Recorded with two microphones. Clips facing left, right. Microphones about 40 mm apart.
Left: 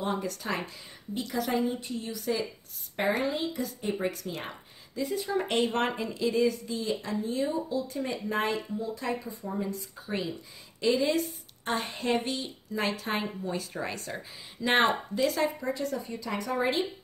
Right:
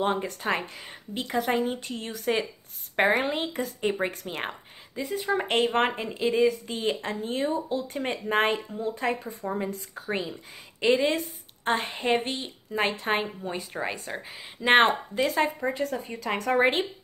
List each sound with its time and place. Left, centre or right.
0.0 s a woman's voice: right
1.5 s speech: right
4.1 s a woman's voice: right
6.7 s speech: right
8.5 s speech: right
9.4 s speech: right
9.7 s speech: right
10.8 s a woman's voice: right
15.2 s speech: right